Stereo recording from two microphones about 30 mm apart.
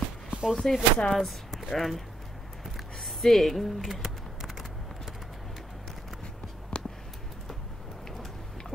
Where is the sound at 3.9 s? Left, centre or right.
Centre.